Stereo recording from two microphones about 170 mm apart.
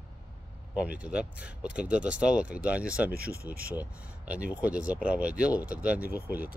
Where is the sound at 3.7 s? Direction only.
10° right (ahead or behind).